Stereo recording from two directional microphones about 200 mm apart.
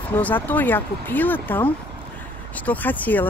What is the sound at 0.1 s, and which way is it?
Speech, 10° left (ahead or behind).